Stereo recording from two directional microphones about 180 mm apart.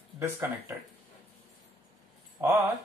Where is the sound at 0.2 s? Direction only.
10° right (ahead or behind).